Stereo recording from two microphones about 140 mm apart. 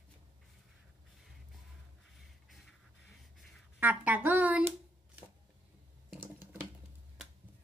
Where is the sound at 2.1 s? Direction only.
Centre (ahead or behind).